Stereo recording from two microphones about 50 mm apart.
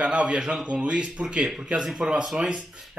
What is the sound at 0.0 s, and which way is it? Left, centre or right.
Speech, right.